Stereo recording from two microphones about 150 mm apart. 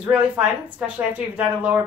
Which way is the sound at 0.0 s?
10° right (ahead or behind).